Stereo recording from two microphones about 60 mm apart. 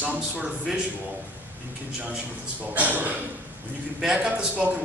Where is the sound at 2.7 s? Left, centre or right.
Right.